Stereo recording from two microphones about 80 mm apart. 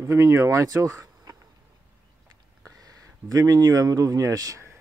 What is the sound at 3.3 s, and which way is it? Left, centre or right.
Speech, right.